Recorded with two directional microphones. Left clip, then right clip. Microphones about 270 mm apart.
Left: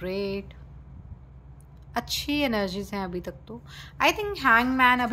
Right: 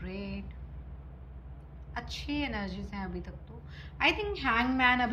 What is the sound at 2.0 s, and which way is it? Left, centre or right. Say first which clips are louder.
A woman's voice: left 8 dB; centre.